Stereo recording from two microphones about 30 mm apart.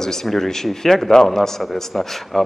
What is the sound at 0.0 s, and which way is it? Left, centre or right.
Speech, centre.